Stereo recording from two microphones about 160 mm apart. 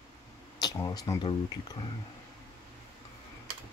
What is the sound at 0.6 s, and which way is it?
Speech, 25° left (ahead or behind).